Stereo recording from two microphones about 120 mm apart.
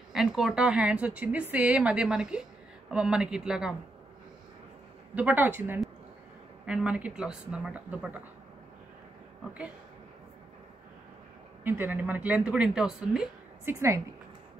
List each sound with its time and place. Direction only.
0.1 s a woman's voice: 5° right (ahead or behind)
5.1 s a woman's voice: 15° right (ahead or behind)
11.6 s a woman's voice: 15° right (ahead or behind)
13.7 s a woman's voice: 25° right (ahead or behind)